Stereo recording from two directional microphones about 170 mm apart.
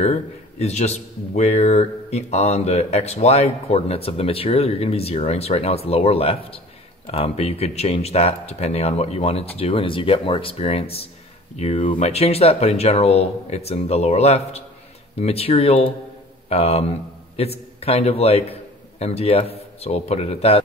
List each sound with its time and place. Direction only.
0.0 s a man's voice: 40° left (ahead or behind)